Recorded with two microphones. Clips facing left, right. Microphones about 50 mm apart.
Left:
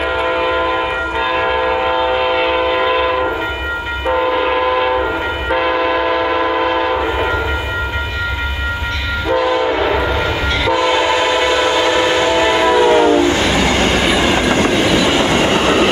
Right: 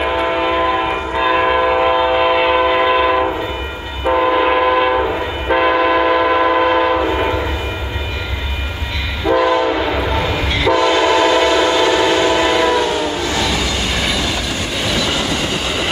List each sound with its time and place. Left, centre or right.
0.0 s train: centre
9.3 s train: centre
12.8 s train: left
13.9 s train: left
14.9 s train: left
15.2 s train: left